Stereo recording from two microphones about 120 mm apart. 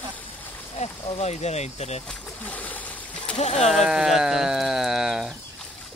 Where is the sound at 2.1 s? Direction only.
10° left (ahead or behind).